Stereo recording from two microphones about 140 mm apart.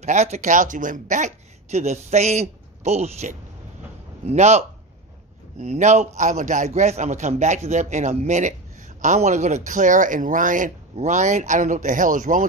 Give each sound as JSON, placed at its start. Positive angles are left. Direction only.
{"t": 0.0, "sound": "a man's voice", "side_deg": -55}
{"t": 9.7, "sound": "speech", "side_deg": -65}